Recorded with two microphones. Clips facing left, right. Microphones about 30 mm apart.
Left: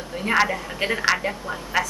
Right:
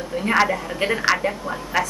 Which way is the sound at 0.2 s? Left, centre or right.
Centre.